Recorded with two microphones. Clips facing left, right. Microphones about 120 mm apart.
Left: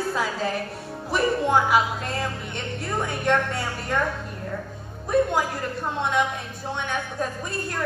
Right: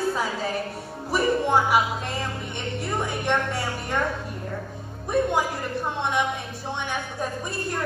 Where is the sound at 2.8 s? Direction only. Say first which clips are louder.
Left 1 dB; centre (ahead or behind).